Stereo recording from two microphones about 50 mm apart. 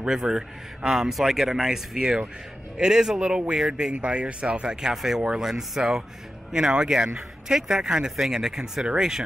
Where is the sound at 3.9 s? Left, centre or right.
Right.